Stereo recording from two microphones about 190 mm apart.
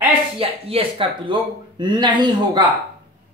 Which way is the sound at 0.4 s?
30° right (ahead or behind).